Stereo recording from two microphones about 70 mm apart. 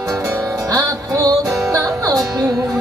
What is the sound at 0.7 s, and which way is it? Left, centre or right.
Music, right.